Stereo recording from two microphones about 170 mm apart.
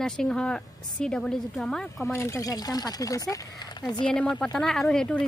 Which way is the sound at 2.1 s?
15° left (ahead or behind).